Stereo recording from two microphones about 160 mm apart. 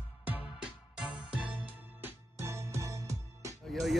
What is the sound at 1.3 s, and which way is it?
Music, 10° right (ahead or behind).